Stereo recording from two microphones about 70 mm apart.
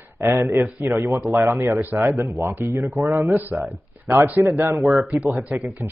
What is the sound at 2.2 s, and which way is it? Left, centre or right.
Speech, right.